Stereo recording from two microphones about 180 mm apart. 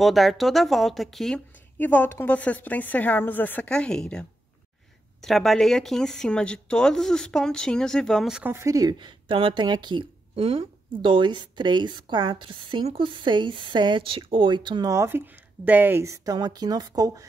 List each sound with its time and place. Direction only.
0.0 s speech: centre (ahead or behind); by 17.3 s 20° right (ahead or behind)